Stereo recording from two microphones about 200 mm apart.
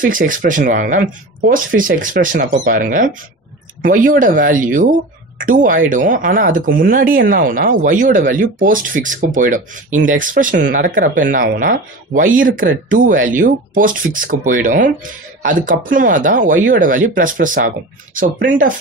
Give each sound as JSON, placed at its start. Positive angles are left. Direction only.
{"t": 0.0, "sound": "speech", "side_deg": -45}